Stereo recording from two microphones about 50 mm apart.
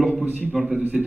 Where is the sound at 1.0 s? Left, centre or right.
Centre.